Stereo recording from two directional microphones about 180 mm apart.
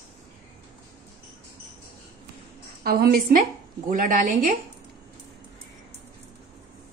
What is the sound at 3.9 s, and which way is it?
Speech, 45° right (ahead or behind).